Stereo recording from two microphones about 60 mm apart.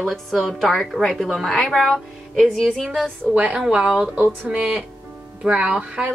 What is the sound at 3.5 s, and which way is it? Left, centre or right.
Speech, centre.